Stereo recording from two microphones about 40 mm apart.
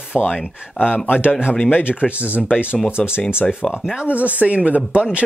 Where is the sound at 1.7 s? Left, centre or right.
Left.